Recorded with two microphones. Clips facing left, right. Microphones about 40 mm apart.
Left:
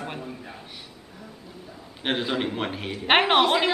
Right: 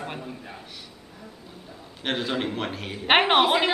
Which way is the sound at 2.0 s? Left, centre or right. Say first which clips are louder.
Left 1 dB; centre.